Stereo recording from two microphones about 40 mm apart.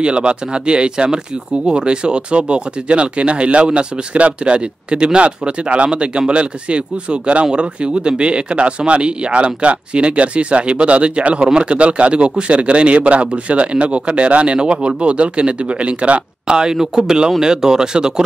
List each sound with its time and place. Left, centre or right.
0.0 s speech: right
16.5 s speech: centre